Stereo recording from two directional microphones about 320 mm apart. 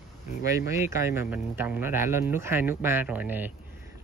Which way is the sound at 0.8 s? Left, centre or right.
Centre.